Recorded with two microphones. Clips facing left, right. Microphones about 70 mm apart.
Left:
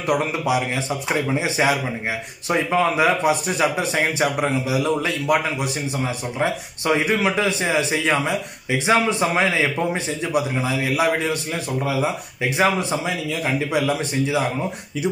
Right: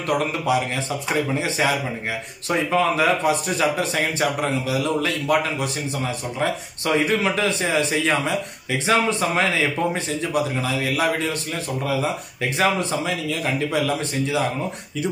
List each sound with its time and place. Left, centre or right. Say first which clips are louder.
0.2 s speech: even; centre